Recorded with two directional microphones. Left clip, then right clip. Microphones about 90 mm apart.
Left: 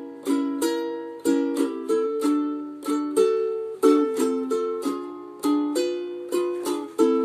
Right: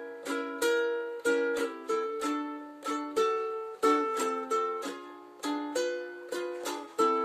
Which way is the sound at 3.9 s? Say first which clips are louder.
Left 7 dB; 20° left (ahead or behind).